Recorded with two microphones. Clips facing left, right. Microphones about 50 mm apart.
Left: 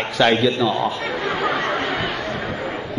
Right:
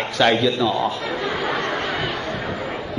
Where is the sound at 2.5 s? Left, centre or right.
Left.